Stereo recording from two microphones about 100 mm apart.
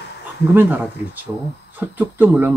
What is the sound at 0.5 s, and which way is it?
Speech, 20° right (ahead or behind).